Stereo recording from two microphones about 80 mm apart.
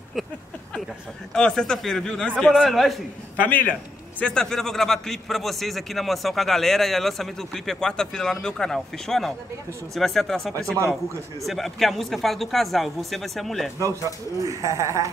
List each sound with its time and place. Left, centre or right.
1.3 s a man's voice: centre
3.3 s a man's voice: left
4.2 s a man's voice: centre
13.7 s speech: right